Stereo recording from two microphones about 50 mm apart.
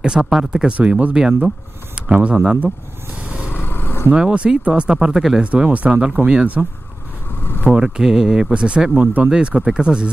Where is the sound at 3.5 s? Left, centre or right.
Left.